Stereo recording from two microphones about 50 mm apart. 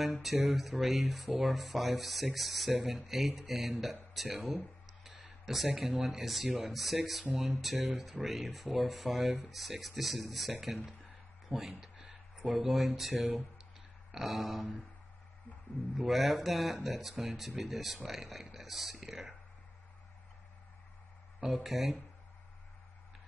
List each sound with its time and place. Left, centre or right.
0.0 s speech: centre
11.8 s a sound: centre
13.2 s speech: right
14.1 s speech: centre
16.0 s speech: centre
21.4 s speech: centre